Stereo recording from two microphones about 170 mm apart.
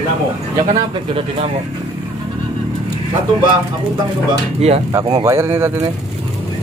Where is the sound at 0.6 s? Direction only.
35° right (ahead or behind).